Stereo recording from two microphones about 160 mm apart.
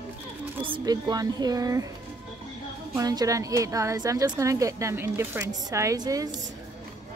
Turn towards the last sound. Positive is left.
turn(degrees=-20)  # may be behind; listen again after turning